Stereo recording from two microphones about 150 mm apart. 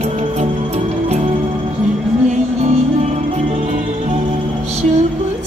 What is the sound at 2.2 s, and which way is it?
Music, 50° right (ahead or behind).